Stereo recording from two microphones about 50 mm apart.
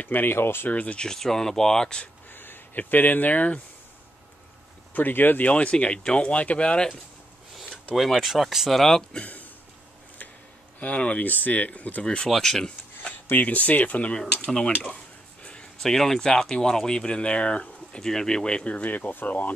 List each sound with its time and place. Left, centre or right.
0.1 s speech: left
0.7 s speech: left
0.9 s speech: centre
2.3 s a sound: left
2.8 s speech: left
4.9 s speech: left
5.5 s speech: left
7.5 s speech: centre
9.2 s a sound: left
10.8 s speech: left
12.3 s speech: centre
13.0 s speech: left; by 15.0 s centre
15.8 s speech: centre; by 18.0 s left
18.0 s speech: centre; by 19.5 s left